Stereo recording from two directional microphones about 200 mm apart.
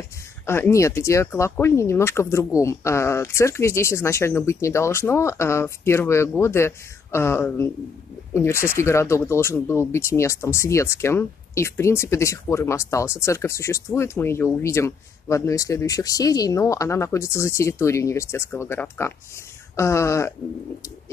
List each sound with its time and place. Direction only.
0.5 s speech: 15° left (ahead or behind)